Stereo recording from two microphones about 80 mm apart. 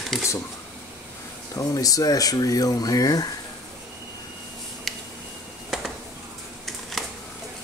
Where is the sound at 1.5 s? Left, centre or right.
Left.